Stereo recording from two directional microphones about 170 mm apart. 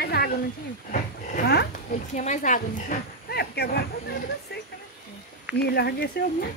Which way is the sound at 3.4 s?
70° left (ahead or behind).